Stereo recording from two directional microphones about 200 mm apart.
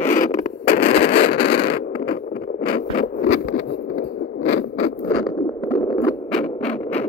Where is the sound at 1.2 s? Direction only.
50° left (ahead or behind).